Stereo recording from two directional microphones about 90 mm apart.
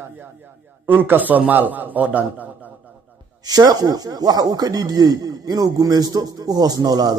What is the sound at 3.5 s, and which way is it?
Speech, 45° right (ahead or behind).